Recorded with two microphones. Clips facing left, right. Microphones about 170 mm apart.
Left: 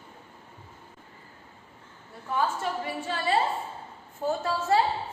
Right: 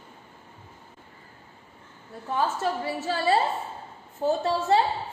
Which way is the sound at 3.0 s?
40° right (ahead or behind).